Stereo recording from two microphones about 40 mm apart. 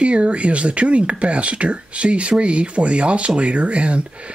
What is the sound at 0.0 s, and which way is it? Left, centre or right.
Speech, right.